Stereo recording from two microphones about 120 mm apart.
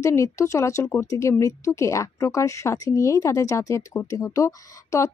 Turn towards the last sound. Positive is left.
turn(degrees=25)  # may be behind; listen again after turning